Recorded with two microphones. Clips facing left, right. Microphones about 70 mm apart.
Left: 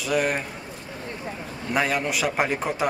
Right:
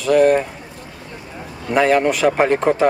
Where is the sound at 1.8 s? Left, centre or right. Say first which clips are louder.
Right 12 dB; right.